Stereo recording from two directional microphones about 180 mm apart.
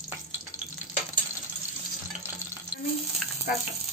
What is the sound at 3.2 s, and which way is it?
Frying, 5° left (ahead or behind).